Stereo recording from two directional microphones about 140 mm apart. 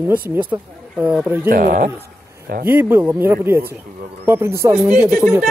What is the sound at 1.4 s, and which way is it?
Speech, 80° right.